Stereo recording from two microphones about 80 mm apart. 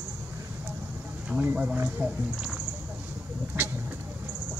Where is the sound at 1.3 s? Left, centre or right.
Right.